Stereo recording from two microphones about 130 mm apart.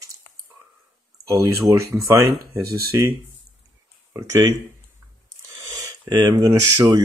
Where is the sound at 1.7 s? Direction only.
25° right (ahead or behind).